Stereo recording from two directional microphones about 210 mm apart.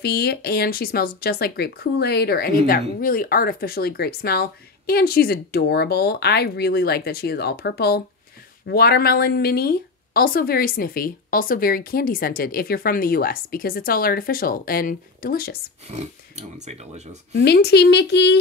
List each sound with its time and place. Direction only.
0.0 s speech: 50° left (ahead or behind)
15.9 s speech: 30° right (ahead or behind)
17.3 s a woman's voice: 55° left (ahead or behind)